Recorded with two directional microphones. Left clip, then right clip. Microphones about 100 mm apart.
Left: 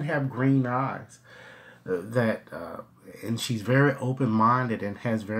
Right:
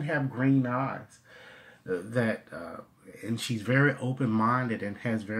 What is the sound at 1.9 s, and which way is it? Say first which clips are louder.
Speech: left 3 dB; 30° left (ahead or behind).